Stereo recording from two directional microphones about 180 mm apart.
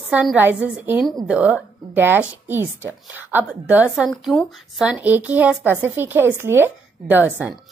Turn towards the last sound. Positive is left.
turn(degrees=-10)  # may be behind; listen again after turning